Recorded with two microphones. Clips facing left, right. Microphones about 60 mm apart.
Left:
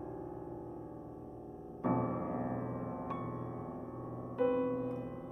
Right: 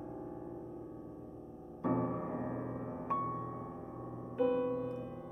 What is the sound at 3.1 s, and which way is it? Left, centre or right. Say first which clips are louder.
Music: right 5 dB; centre.